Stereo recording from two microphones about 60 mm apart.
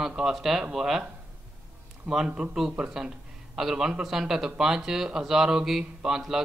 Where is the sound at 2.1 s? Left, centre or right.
Centre.